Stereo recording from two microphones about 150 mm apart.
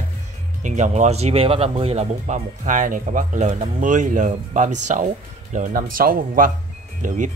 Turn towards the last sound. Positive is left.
turn(degrees=-60)  # may be behind; listen again after turning